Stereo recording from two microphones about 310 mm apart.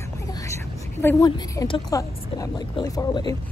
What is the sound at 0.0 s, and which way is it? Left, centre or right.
A woman's voice, centre.